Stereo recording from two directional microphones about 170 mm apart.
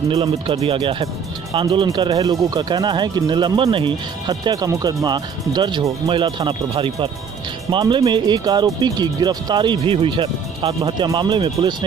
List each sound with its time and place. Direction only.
0.1 s speech: 35° right (ahead or behind)